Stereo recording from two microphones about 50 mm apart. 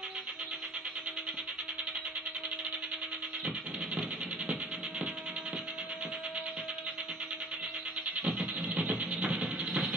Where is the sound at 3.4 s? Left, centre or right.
Centre.